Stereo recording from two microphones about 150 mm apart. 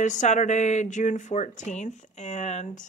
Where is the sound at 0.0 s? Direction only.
55° left (ahead or behind).